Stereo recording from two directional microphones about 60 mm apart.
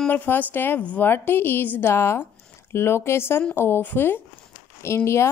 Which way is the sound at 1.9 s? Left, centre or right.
Left.